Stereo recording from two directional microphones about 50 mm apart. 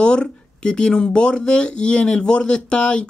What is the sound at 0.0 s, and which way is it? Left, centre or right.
Speech, centre.